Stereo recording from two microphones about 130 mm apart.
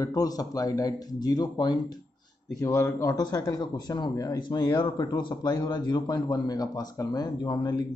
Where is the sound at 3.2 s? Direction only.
30° left (ahead or behind).